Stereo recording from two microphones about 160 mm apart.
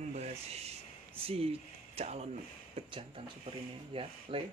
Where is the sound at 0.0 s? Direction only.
45° right (ahead or behind).